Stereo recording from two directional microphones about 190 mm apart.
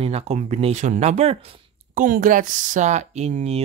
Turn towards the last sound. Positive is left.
turn(degrees=-35)  # may be behind; listen again after turning